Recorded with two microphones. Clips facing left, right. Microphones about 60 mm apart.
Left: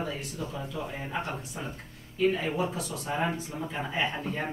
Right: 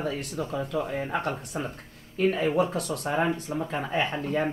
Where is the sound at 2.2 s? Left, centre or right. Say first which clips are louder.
Right 2 dB; right.